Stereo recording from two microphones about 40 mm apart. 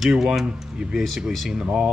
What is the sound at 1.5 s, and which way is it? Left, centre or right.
Speech, right.